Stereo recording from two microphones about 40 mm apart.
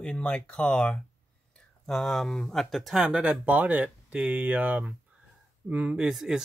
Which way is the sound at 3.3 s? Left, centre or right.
Right.